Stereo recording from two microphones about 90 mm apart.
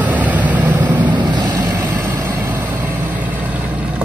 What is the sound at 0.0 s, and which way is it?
Vehicle, 15° right (ahead or behind).